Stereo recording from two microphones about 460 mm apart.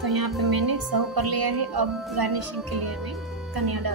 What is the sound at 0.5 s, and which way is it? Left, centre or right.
A woman's voice, right.